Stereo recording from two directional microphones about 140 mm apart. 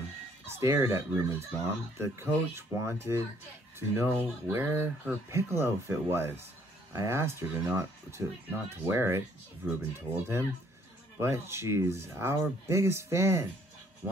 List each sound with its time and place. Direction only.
0.5 s speech: 20° right (ahead or behind)